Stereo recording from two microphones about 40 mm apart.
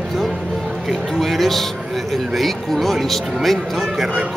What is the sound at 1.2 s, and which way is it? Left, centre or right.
Speech, centre.